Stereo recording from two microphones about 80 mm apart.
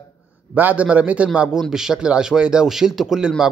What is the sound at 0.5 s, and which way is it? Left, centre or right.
A man's voice, centre.